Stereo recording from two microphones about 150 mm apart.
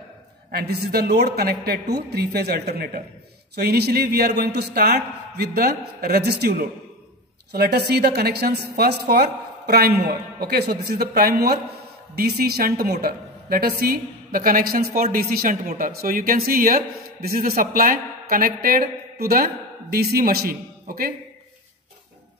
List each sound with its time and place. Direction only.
0.5 s a woman's voice: 90° right
7.5 s a woman's voice: 90° right; by 21.1 s 70° right (ahead or behind)